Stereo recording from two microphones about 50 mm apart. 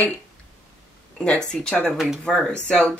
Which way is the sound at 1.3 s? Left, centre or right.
Centre.